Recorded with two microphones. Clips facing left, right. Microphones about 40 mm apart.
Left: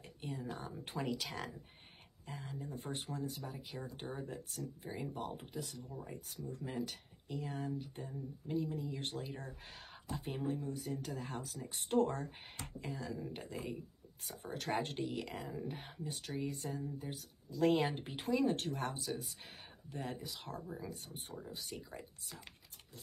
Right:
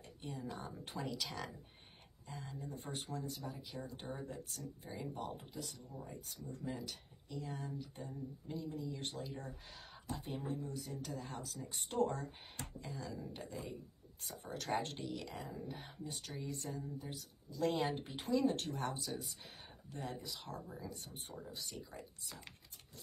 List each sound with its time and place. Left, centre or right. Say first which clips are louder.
0.2 s speech: left 2 dB; left
20.6 s speech: left 3 dB; centre
20.9 s speech: left 2 dB; left